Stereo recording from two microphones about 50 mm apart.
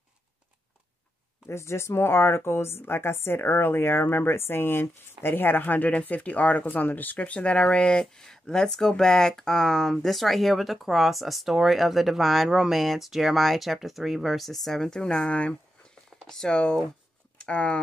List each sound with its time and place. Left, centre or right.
1.5 s a woman's voice: left
16.3 s a woman's voice: centre